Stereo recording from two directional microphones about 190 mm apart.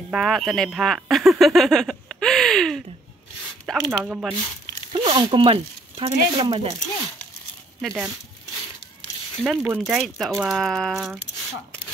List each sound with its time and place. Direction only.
0.1 s speech: centre (ahead or behind)
5.0 s speech: 25° right (ahead or behind)
7.8 s speech: centre (ahead or behind)
9.4 s speech: 5° right (ahead or behind)